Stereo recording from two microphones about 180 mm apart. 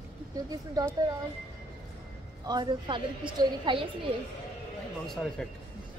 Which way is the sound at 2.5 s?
25° right (ahead or behind).